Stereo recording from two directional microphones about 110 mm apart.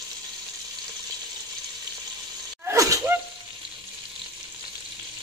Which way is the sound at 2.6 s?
25° right (ahead or behind).